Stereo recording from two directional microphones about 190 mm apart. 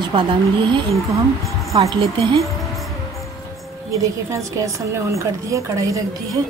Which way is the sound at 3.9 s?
15° right (ahead or behind).